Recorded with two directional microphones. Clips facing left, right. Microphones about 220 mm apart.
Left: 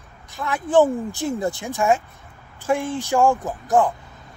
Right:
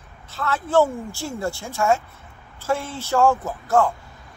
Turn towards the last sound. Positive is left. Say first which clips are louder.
# left 1 dB
turn(degrees=15)  # may be behind; listen again after turning